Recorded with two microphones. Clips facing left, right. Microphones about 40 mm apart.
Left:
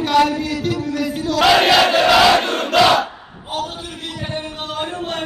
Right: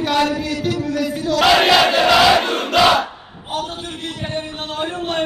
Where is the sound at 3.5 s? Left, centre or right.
Right.